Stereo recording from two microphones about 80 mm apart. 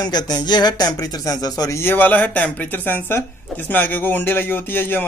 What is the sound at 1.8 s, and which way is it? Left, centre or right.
Speech, left.